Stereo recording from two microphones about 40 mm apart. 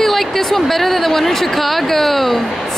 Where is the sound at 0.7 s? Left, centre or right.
Centre.